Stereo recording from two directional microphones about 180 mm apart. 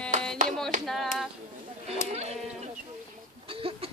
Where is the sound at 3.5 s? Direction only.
30° right (ahead or behind).